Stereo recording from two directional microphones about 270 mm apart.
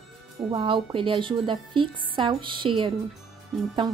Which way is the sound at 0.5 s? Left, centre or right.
Centre.